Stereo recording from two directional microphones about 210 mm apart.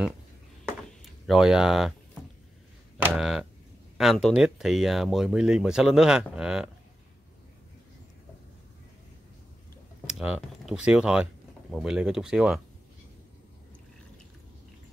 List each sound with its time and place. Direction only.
0.7 s a sound: centre (ahead or behind)
3.0 s speech: centre (ahead or behind)
10.0 s computer keyboard: 5° right (ahead or behind)
10.9 s speech: 5° right (ahead or behind)